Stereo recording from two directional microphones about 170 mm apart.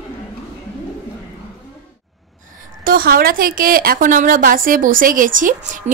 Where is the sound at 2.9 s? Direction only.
60° right (ahead or behind).